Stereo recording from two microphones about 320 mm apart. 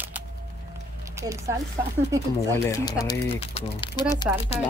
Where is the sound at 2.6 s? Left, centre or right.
Centre.